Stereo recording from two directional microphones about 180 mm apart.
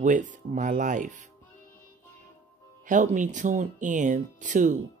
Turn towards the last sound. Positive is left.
turn(degrees=-45)  # may be behind; listen again after turning